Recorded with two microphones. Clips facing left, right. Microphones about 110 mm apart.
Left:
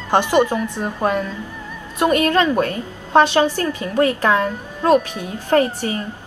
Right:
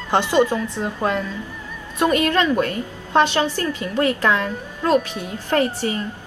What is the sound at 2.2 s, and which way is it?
A woman's voice, 20° left (ahead or behind).